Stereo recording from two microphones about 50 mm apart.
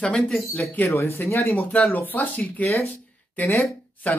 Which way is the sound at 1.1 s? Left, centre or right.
Left.